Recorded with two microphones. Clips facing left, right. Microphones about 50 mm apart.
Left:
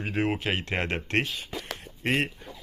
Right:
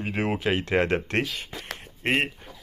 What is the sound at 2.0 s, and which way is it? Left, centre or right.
Speech, right.